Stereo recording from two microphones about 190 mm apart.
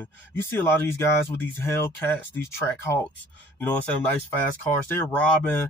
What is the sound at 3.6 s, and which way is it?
Speech, 10° left (ahead or behind).